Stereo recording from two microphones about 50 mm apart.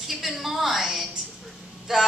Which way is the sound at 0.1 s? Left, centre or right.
Centre.